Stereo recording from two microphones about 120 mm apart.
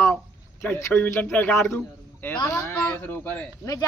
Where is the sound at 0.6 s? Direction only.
15° left (ahead or behind).